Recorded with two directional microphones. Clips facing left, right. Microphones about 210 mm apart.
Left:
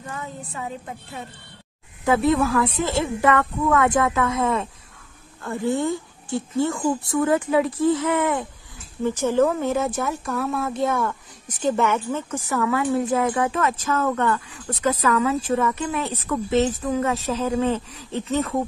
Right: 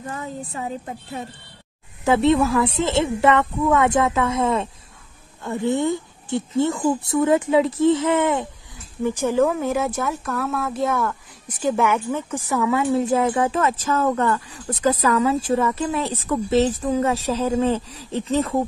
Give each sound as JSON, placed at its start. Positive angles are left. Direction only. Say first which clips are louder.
{"t": 0.1, "sound": "speech", "louder": "right 2 dB", "side_deg": -35}
{"t": 2.0, "sound": "a woman's voice", "louder": "right 2 dB", "side_deg": -25}
{"t": 9.0, "sound": "a woman's voice", "louder": "even", "side_deg": -15}